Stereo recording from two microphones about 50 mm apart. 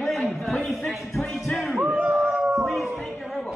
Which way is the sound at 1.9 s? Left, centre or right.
Right.